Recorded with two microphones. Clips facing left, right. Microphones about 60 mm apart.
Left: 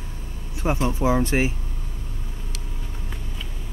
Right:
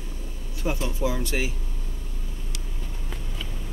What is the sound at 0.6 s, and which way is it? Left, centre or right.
Speech, left.